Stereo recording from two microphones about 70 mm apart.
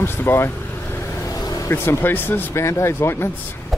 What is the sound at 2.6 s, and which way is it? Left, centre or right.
Speech, left.